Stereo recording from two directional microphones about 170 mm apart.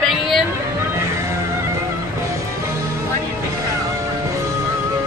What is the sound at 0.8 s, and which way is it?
Music, 15° right (ahead or behind).